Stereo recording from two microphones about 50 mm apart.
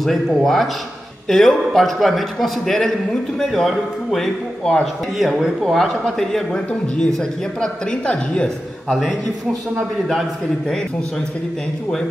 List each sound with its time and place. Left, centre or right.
0.4 s a man's voice: centre
6.5 s a man's voice: centre